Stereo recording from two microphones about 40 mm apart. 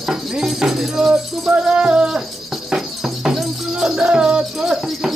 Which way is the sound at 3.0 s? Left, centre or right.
Centre.